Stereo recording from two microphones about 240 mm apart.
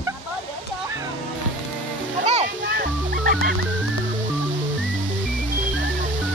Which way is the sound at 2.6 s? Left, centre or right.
Right.